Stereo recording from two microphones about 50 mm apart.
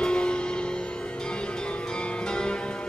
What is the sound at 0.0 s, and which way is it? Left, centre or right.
Music, centre.